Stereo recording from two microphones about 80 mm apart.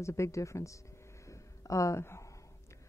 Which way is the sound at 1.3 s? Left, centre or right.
Left.